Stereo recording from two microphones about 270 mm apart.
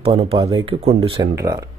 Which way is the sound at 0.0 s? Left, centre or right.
Right.